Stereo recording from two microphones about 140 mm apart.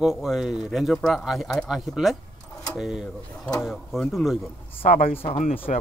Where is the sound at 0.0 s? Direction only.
5° right (ahead or behind).